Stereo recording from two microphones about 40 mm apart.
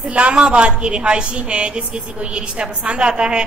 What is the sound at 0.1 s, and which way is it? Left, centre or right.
A woman's voice, right.